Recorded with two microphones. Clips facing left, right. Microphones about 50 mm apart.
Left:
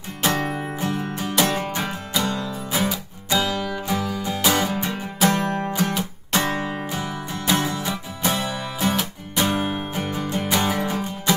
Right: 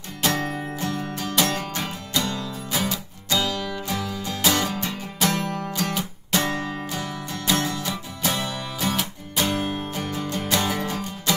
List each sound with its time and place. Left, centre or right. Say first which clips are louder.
0.2 s music: left 2 dB; left